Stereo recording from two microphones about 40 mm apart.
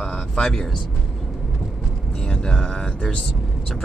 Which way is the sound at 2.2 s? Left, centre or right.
Left.